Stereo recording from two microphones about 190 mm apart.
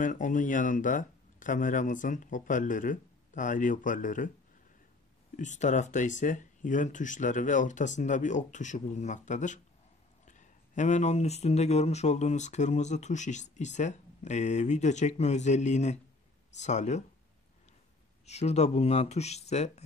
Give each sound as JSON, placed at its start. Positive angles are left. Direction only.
{"t": 0.0, "sound": "speech", "side_deg": 40}
{"t": 5.3, "sound": "speech", "side_deg": 40}
{"t": 18.2, "sound": "speech", "side_deg": 35}